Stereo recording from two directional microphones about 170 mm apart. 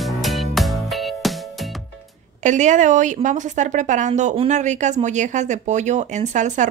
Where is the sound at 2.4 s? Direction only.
45° right (ahead or behind).